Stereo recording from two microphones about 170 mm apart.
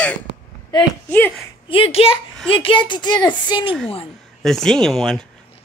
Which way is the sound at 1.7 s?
35° left (ahead or behind).